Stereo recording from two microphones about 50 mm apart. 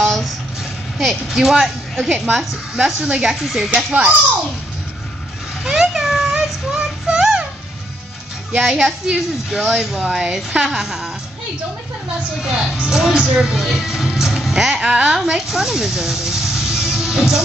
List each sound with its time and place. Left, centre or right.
0.0 s vehicle: centre
0.9 s speech: centre
3.7 s a child's voice: right
5.6 s child singing: centre
8.5 s speech: centre
12.4 s speech: centre
13.2 s a child's voice: right
13.5 s speech: centre